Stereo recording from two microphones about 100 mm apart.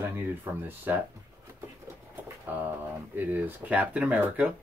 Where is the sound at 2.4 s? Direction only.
20° right (ahead or behind).